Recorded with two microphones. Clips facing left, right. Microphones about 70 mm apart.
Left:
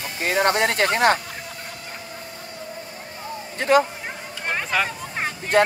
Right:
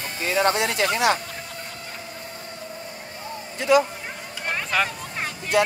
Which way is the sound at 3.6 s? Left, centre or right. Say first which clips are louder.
Left 1 dB; left.